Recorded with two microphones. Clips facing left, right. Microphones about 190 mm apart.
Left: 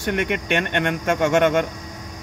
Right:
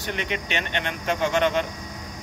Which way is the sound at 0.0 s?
55° left (ahead or behind).